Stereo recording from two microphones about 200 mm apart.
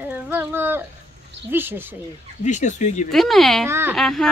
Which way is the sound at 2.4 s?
35° left (ahead or behind).